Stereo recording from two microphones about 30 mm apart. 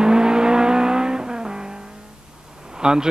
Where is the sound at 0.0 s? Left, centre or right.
Right.